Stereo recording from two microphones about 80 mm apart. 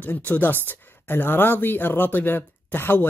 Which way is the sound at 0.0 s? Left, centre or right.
Left.